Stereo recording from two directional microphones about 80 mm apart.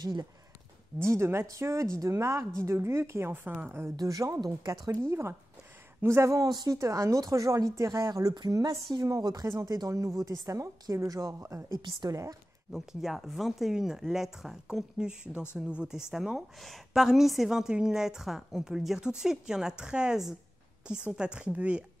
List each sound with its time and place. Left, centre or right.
0.0 s a woman's voice: right
1.1 s speech: right
3.9 s a woman's voice: right
6.0 s speech: right
6.5 s a woman's voice: right
6.8 s a woman's voice: right
8.1 s a woman's voice: right
12.7 s a woman's voice: centre